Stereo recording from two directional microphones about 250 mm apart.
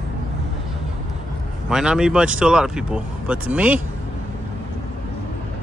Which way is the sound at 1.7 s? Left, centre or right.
Centre.